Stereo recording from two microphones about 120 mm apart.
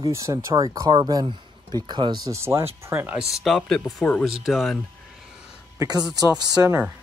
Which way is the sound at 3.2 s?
Centre (ahead or behind).